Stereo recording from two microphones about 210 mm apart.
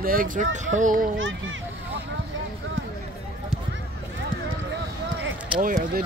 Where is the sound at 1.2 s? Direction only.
65° right (ahead or behind).